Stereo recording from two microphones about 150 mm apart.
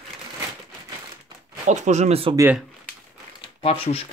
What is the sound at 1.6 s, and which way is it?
Speech, 50° right (ahead or behind).